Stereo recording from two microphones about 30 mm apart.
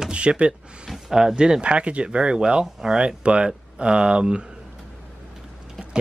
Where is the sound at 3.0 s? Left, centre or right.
Right.